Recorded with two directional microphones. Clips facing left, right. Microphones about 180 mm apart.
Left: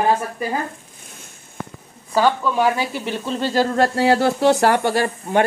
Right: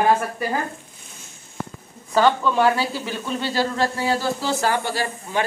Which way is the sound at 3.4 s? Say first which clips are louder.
Left 5 dB; 50° left (ahead or behind).